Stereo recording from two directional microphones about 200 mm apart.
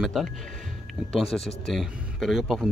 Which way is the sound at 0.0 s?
Centre (ahead or behind).